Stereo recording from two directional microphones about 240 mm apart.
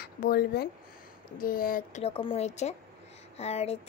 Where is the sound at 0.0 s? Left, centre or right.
Left.